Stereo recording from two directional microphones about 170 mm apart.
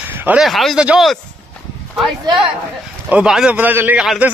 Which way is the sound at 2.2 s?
25° right (ahead or behind).